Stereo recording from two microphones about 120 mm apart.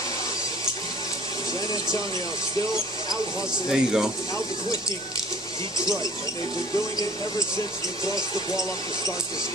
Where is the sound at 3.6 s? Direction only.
5° right (ahead or behind).